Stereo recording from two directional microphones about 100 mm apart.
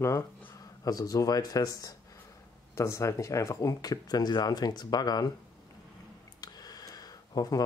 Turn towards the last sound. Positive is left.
turn(degrees=40)  # may be behind; listen again after turning